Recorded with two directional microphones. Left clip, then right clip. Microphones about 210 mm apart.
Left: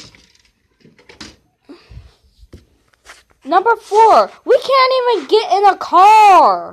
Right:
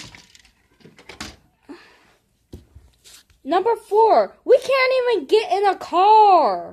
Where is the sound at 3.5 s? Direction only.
5° right (ahead or behind).